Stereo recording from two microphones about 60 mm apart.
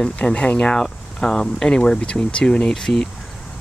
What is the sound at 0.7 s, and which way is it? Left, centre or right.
Speech, centre.